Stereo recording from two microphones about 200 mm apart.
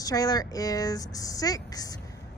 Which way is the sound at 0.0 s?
20° left (ahead or behind).